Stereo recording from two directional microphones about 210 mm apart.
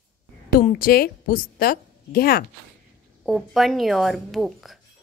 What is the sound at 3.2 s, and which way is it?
A woman's voice, centre (ahead or behind).